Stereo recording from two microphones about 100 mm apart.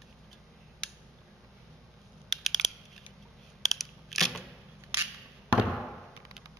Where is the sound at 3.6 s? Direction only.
Centre (ahead or behind).